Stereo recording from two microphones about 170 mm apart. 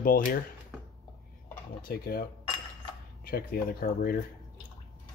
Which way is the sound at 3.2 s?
60° left (ahead or behind).